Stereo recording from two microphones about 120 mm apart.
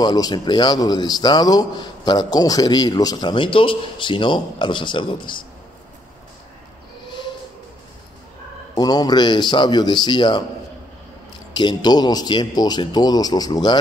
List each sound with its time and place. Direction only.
0.0 s a man's voice: 35° left (ahead or behind)
8.7 s a man's voice: 35° left (ahead or behind)
11.5 s a man's voice: 35° left (ahead or behind)